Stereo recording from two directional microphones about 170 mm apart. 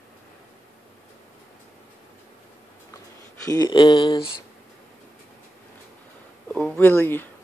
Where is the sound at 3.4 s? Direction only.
20° left (ahead or behind).